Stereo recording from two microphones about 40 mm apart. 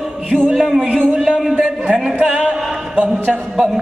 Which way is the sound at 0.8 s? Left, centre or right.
Right.